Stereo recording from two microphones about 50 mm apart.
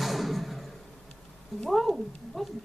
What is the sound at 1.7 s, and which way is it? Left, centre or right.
Cat, centre.